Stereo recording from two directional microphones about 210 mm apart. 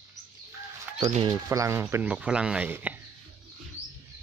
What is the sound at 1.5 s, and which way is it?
Speech, 15° right (ahead or behind).